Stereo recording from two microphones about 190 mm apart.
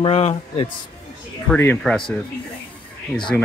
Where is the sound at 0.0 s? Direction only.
35° left (ahead or behind).